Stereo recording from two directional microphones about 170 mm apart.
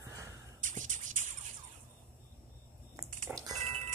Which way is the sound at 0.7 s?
50° right (ahead or behind).